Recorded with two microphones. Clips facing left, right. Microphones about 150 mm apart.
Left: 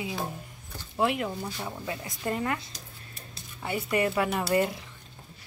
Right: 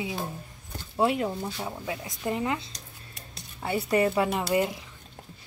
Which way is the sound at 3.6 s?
30° right (ahead or behind).